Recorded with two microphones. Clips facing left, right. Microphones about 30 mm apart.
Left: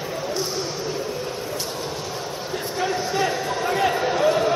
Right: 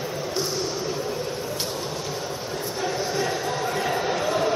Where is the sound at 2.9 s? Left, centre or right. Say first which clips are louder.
Left 3 dB; centre.